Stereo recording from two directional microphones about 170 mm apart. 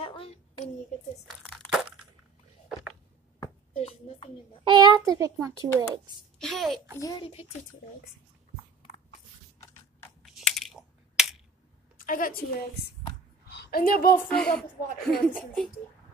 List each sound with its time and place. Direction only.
0.0 s child singing: 35° left (ahead or behind)
1.2 s a sound: 5° left (ahead or behind)
3.7 s music: 35° left (ahead or behind)
4.6 s a child's voice: 25° right (ahead or behind)
6.3 s a child's voice: centre (ahead or behind)
7.0 s a child's voice: 20° left (ahead or behind)
10.2 s crushing: centre (ahead or behind)
12.0 s a woman's voice: 55° left (ahead or behind)
13.5 s a sound: 70° left (ahead or behind)
14.1 s speech: 5° left (ahead or behind)